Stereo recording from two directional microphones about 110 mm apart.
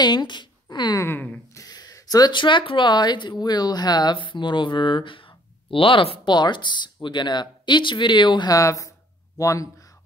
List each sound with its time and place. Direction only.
0.0 s speech: 40° left (ahead or behind)
8.5 s speech: 30° left (ahead or behind)